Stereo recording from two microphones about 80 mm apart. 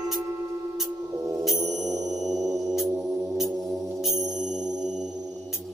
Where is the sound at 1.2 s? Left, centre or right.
Right.